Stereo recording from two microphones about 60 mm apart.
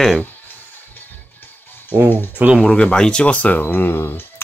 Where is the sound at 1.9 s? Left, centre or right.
Right.